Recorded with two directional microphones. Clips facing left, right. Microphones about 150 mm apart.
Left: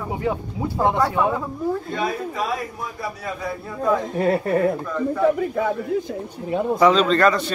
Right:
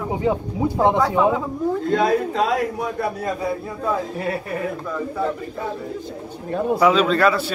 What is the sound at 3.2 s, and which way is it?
Speech, 35° right (ahead or behind).